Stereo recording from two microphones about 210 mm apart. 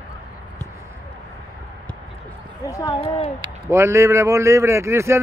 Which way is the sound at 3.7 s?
15° right (ahead or behind).